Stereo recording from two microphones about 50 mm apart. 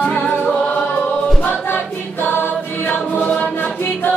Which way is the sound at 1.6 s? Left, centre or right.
Left.